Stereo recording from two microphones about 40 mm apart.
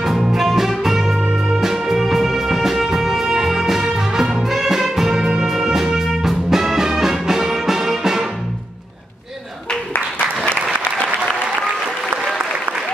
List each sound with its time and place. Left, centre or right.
0.0 s music: centre
10.1 s applause: left